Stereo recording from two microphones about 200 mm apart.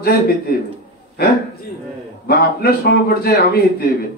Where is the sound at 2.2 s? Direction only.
50° left (ahead or behind).